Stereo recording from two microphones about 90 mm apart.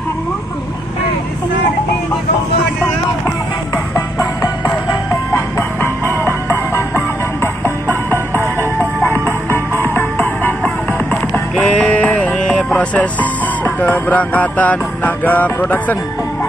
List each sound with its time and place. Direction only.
3.3 s music: 35° left (ahead or behind)
5.3 s music: 25° left (ahead or behind)
9.0 s music: 25° left (ahead or behind)
11.5 s music: 10° left (ahead or behind)